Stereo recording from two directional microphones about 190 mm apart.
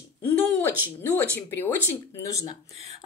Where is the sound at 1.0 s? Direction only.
10° left (ahead or behind).